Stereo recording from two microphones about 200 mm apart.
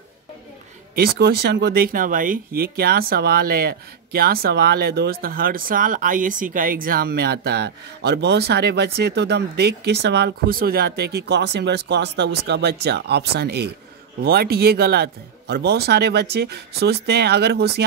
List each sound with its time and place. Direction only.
0.9 s speech: 50° right (ahead or behind)